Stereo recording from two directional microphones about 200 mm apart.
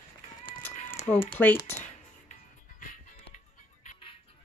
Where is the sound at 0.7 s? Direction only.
40° left (ahead or behind).